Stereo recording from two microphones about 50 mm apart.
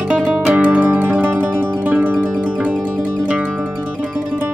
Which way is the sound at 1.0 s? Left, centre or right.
Right.